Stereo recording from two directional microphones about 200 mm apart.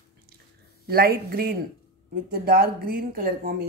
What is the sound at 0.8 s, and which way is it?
Speech, 50° right (ahead or behind).